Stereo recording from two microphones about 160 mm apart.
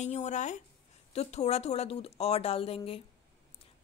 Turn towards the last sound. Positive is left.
turn(degrees=35)  # may be behind; listen again after turning